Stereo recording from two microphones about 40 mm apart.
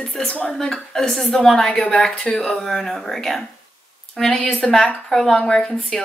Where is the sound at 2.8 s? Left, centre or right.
Centre.